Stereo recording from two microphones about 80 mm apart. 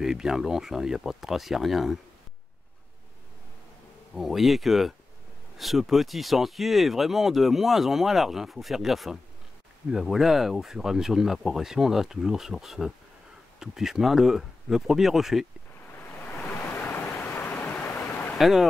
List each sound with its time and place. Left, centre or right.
0.0 s speech: centre
4.1 s speech: centre
16.0 s waves: left
18.4 s speech: centre